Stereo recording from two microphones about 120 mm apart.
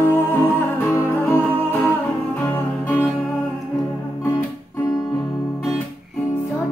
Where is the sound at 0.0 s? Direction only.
15° left (ahead or behind).